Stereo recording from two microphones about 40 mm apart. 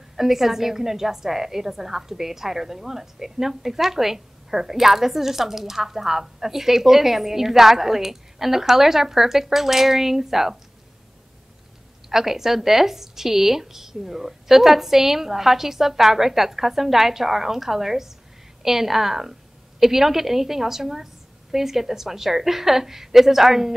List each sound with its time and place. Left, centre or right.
0.1 s a woman's voice: centre
12.1 s a woman's voice: centre